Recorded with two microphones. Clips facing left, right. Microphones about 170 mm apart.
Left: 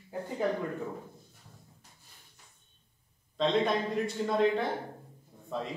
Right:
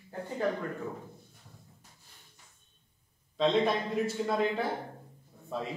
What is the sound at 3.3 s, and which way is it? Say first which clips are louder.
A man's voice: right 1 dB; centre (ahead or behind).